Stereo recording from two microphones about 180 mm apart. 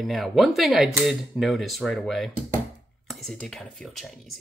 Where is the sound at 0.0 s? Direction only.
Centre (ahead or behind).